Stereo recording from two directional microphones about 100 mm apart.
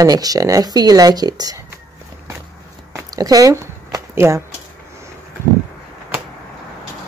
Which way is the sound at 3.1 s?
35° right (ahead or behind).